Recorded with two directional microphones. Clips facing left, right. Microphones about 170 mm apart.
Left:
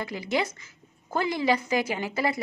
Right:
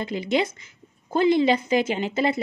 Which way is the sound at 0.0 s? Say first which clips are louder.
Right 4 dB; 20° right (ahead or behind).